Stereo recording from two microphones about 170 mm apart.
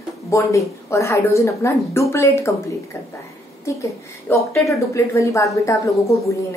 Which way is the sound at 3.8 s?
15° left (ahead or behind).